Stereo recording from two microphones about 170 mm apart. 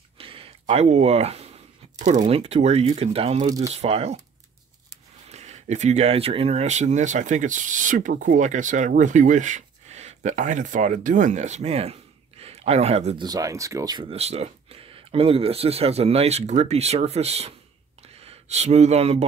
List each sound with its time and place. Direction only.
0.2 s a sound: 30° right (ahead or behind)
2.0 s speech: 45° right (ahead or behind)
3.4 s speech: 20° right (ahead or behind)
3.7 s speech: 35° right (ahead or behind)
5.3 s speech: 40° right (ahead or behind)
13.2 s speech: 20° right (ahead or behind); by 19.2 s 40° right (ahead or behind)